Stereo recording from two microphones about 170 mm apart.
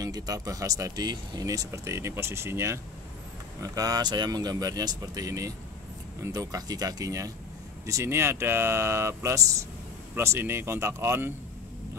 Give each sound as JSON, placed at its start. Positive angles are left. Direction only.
{"t": 0.0, "sound": "speech", "side_deg": -20}